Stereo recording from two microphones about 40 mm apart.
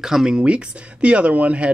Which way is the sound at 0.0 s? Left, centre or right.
Centre.